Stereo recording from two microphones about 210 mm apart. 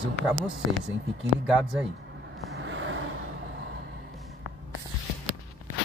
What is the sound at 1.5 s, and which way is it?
Speech, 5° right (ahead or behind).